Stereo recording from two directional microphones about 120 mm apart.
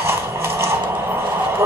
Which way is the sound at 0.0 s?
20° right (ahead or behind).